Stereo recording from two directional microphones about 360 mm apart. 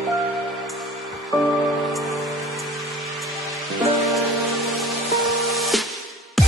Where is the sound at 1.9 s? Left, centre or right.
Centre.